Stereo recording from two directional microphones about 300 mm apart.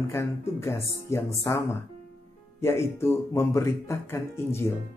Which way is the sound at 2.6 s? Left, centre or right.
Centre.